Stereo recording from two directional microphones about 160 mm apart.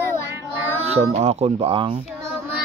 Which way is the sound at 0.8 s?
40° right (ahead or behind).